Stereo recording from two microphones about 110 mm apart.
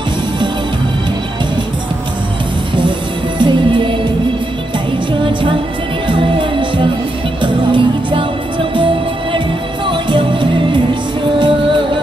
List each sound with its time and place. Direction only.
3.3 s music: 45° right (ahead or behind)
5.2 s music: 50° right (ahead or behind)